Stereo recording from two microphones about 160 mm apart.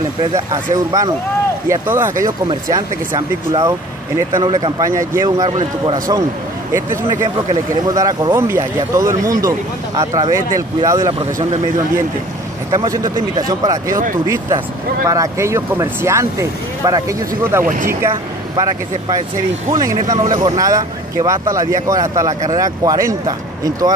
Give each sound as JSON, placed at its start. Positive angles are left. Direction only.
{"t": 0.2, "sound": "speech", "side_deg": -20}
{"t": 5.5, "sound": "a man's voice", "side_deg": -35}
{"t": 7.7, "sound": "speech", "side_deg": -20}
{"t": 12.7, "sound": "speech", "side_deg": -20}